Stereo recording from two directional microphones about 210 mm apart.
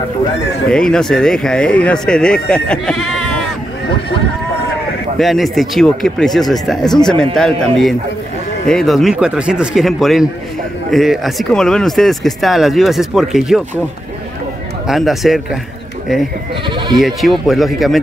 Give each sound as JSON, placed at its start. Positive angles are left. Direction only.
{"t": 0.7, "sound": "speech", "side_deg": 5}
{"t": 5.2, "sound": "speech", "side_deg": 0}
{"t": 14.9, "sound": "speech", "side_deg": 0}
{"t": 16.6, "sound": "speech", "side_deg": -20}
{"t": 17.0, "sound": "speech", "side_deg": 0}